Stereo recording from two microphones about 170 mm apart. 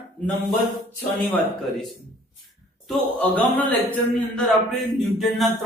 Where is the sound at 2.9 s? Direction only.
10° left (ahead or behind).